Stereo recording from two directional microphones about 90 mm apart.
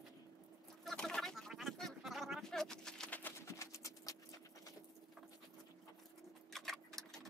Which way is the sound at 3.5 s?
35° left (ahead or behind).